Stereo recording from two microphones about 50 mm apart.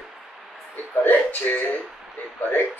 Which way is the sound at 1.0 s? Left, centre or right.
Left.